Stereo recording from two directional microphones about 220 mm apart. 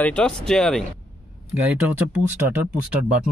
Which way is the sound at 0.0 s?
5° left (ahead or behind).